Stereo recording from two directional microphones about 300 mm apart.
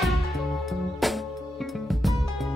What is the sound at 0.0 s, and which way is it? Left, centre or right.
Music, centre.